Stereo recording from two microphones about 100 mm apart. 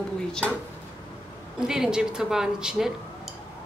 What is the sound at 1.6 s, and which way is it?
A woman's voice, 5° right (ahead or behind).